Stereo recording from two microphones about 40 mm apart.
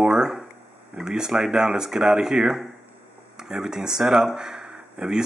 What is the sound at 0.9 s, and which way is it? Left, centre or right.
Speech, centre.